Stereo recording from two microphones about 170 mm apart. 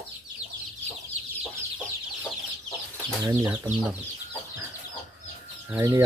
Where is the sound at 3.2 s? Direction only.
20° right (ahead or behind).